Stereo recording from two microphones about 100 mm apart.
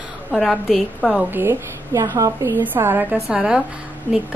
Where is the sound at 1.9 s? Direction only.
35° right (ahead or behind).